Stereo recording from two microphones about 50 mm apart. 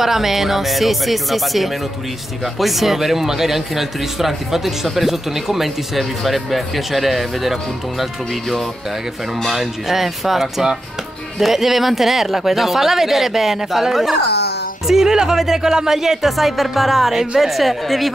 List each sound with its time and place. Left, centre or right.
0.0 s speech: centre